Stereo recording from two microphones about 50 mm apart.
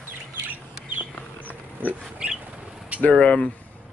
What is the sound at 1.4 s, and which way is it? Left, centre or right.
Pig, right.